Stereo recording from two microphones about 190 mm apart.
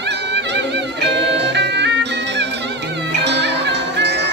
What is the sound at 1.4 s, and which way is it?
Music, 65° right (ahead or behind).